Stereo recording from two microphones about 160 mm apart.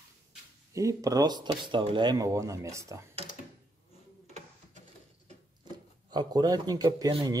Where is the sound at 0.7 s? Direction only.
20° right (ahead or behind).